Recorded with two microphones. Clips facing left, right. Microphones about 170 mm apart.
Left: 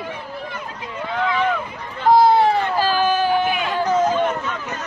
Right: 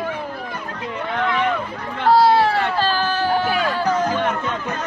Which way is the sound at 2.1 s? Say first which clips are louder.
Left 1 dB; 15° left (ahead or behind).